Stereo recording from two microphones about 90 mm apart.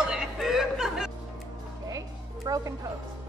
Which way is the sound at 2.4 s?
40° right (ahead or behind).